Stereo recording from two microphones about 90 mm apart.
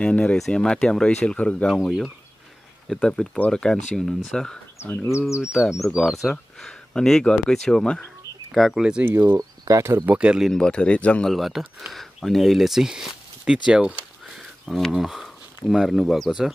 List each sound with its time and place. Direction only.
0.0 s speech: 15° left (ahead or behind)
4.7 s speech: 25° left (ahead or behind)
5.4 s speech: 5° right (ahead or behind)
9.0 s speech: 20° right (ahead or behind)
9.4 s speech: 35° right (ahead or behind)
10.0 s speech: 10° right (ahead or behind)
10.5 s speech: 10° left (ahead or behind)
11.3 s speech: 5° right (ahead or behind)
13.7 s a sound: 10° right (ahead or behind)
14.9 s speech: 5° right (ahead or behind)